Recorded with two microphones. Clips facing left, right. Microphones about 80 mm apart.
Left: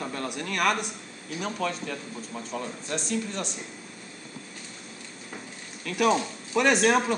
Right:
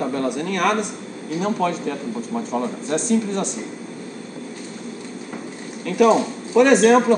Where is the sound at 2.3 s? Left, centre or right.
Right.